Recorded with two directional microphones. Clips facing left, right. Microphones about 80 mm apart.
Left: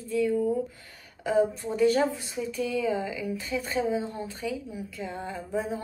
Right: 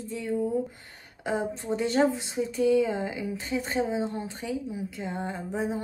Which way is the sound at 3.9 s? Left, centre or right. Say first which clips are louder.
Even; right.